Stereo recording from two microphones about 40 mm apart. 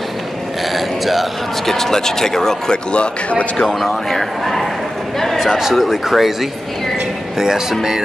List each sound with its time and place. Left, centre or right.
0.7 s a sound: centre
1.7 s speech: centre
2.7 s a man's voice: left
3.6 s speech: centre
5.5 s speech: centre
7.3 s speech: centre